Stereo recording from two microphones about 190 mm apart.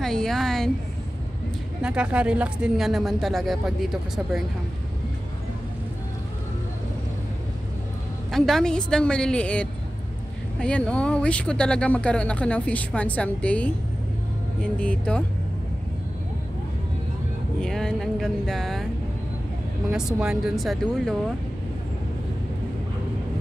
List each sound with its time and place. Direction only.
0.0 s a woman's voice: 5° left (ahead or behind)
1.8 s speech: 5° right (ahead or behind)
8.3 s speech: centre (ahead or behind)
17.6 s a sound: 5° left (ahead or behind)
20.1 s speech: 5° right (ahead or behind)